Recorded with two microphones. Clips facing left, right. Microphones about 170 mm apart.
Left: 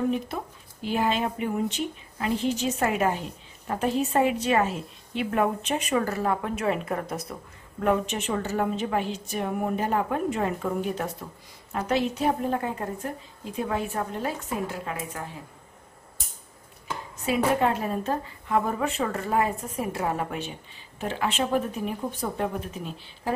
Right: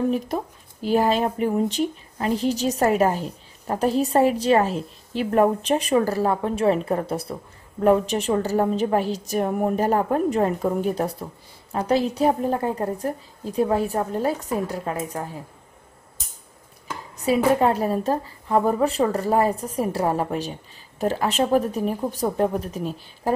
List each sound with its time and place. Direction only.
0.8 s speech: 40° right (ahead or behind)
17.2 s speech: 35° right (ahead or behind)